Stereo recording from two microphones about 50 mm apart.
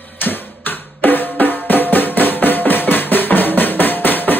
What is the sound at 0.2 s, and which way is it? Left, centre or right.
Drum, left.